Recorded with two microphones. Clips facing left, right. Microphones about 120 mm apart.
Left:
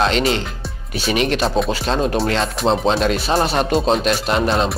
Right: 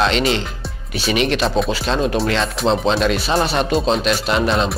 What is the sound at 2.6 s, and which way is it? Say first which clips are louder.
Speech: even; centre (ahead or behind).